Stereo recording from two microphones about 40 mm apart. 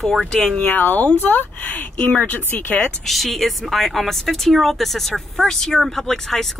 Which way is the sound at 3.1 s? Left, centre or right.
Centre.